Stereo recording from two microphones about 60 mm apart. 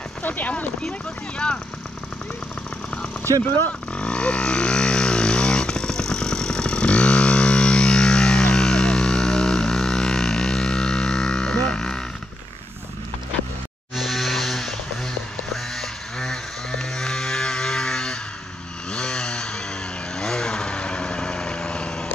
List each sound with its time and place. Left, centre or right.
0.2 s speech: left
3.9 s vehicle: centre
13.9 s chainsaw: centre
15.5 s livestock: centre
18.9 s chainsaw: centre
20.2 s vehicle: centre